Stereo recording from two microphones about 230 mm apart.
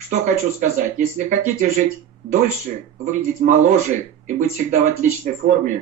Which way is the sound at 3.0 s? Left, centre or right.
Right.